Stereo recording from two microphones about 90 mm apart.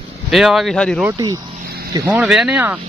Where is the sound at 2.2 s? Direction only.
10° right (ahead or behind).